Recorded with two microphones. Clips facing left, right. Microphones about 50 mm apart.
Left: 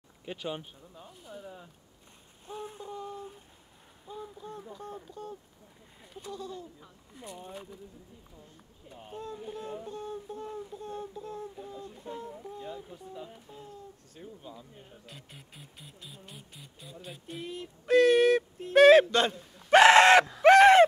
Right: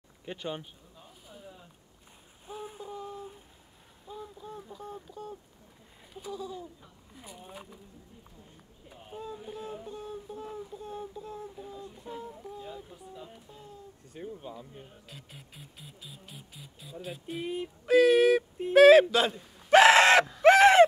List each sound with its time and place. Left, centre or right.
0.2 s speech: centre
1.4 s a sound: centre
2.4 s a sound: centre
4.7 s speech: centre
8.8 s speech: centre
14.1 s speech: right
15.0 s speech: centre
17.4 s speech: right
17.8 s speech: centre
19.7 s a sound: centre